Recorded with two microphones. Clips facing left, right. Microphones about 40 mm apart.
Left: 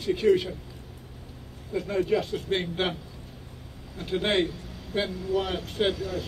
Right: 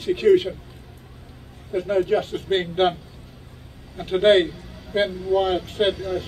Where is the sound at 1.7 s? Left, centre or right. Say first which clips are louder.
Right 5 dB; right.